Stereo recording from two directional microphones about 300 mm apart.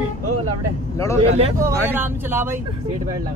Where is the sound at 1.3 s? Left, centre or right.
Centre.